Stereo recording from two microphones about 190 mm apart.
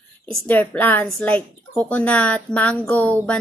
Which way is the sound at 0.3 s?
10° left (ahead or behind).